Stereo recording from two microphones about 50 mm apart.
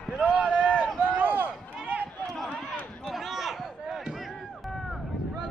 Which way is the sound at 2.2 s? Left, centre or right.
Centre.